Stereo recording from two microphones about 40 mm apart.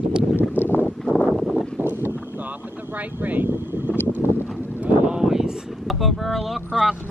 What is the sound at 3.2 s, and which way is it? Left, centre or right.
Vehicle, right.